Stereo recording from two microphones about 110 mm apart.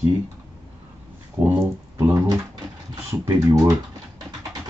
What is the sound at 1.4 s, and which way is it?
Speech, 20° right (ahead or behind).